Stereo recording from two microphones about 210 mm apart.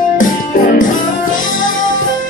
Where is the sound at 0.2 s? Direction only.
40° left (ahead or behind).